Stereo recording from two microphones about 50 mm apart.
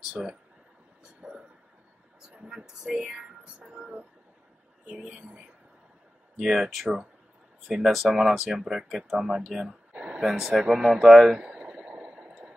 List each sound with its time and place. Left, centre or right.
0.1 s speech: centre
1.2 s vehicle: centre
2.4 s speech: centre
3.6 s a sound: right
6.3 s speech: centre
11.3 s a sound: right